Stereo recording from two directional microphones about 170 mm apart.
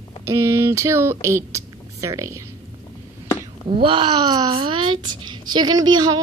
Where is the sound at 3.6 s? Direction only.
30° right (ahead or behind).